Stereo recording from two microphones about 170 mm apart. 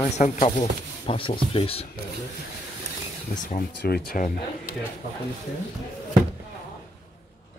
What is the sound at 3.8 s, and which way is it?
Speech, 65° left (ahead or behind).